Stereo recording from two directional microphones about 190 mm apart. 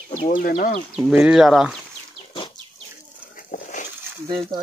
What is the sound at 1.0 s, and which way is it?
Speech, 5° right (ahead or behind).